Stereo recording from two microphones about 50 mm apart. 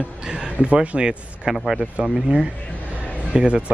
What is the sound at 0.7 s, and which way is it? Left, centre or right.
Speech, centre.